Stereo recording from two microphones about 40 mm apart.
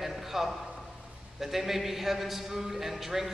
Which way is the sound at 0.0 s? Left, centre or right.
Centre.